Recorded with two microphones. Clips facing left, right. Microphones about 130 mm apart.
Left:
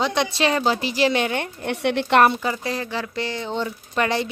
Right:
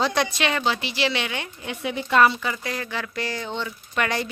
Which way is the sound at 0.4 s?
35° left (ahead or behind).